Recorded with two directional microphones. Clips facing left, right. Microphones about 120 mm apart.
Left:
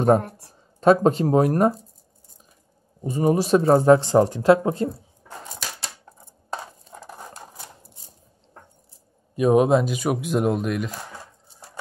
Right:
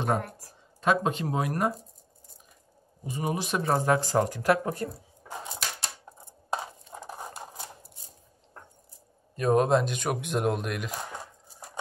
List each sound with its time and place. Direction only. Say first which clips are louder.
0.0 s speech: left 10 dB; 40° left (ahead or behind)
3.0 s speech: left 10 dB; 40° left (ahead or behind); by 4.9 s 25° left (ahead or behind)
7.1 s a sound: right 1 dB; 15° right (ahead or behind)
9.3 s speech: left 5 dB; 10° left (ahead or behind)